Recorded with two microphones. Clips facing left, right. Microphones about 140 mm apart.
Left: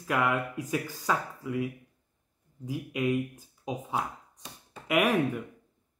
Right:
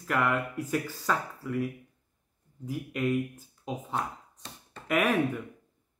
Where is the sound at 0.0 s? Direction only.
10° left (ahead or behind).